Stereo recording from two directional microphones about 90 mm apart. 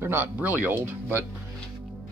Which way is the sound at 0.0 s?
25° right (ahead or behind).